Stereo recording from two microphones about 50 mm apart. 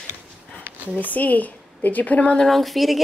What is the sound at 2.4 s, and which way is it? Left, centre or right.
Speech, centre.